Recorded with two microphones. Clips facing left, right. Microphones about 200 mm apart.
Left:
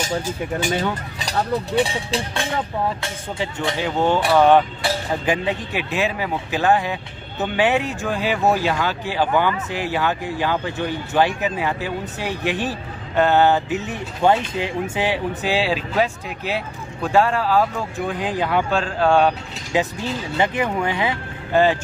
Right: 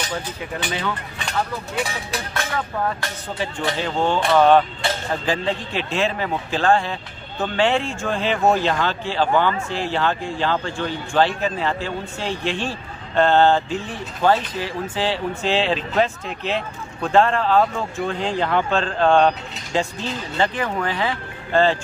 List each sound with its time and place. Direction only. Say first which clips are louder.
0.2 s speech: left 5 dB; 45° left (ahead or behind); by 2.6 s 25° left (ahead or behind)
3.3 s speech: even; 15° left (ahead or behind)